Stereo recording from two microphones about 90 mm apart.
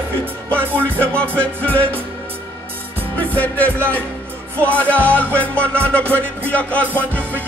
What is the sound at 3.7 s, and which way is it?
Music, 25° right (ahead or behind).